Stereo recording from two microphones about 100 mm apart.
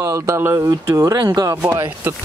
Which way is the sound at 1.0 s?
30° right (ahead or behind).